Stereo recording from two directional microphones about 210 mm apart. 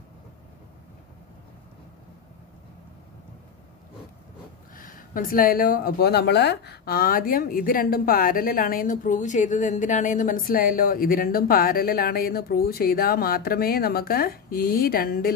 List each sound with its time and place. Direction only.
4.7 s a woman's voice: 40° left (ahead or behind)